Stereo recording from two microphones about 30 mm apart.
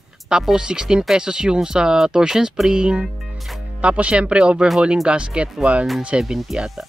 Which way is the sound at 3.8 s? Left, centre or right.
Right.